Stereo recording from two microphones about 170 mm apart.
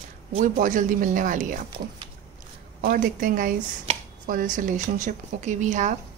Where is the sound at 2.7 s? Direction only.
55° right (ahead or behind).